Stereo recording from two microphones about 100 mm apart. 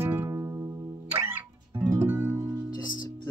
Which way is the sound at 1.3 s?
20° right (ahead or behind).